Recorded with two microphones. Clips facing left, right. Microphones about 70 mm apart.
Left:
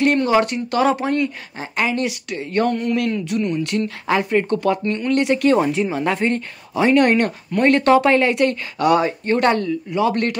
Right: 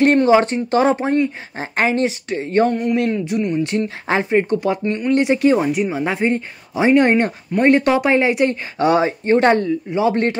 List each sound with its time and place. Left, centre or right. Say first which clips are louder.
0.0 s speech: right 3 dB; right; by 5.6 s centre
5.6 s speech: even; centre